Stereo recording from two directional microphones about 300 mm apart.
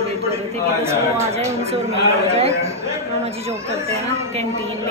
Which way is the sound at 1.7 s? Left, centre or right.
Centre.